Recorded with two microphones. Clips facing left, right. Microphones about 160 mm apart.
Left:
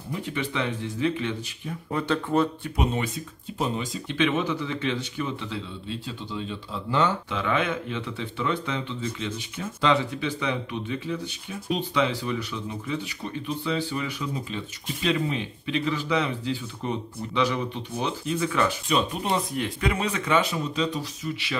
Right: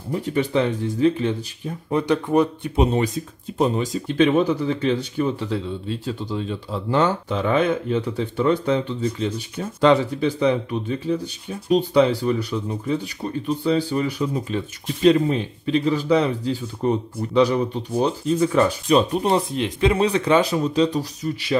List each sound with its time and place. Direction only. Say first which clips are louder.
0.1 s speech: right 9 dB; 40° right (ahead or behind)
1.9 s speech: right 6 dB; 15° right (ahead or behind)
2.7 s speech: right 7 dB; 35° right (ahead or behind)
3.5 s speech: right 8 dB; 45° right (ahead or behind)
19.5 s speech: right 7 dB; 25° right (ahead or behind); by 21.5 s 40° right (ahead or behind)